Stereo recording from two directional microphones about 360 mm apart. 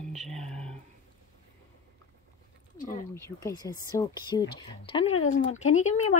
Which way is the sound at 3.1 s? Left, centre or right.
Centre.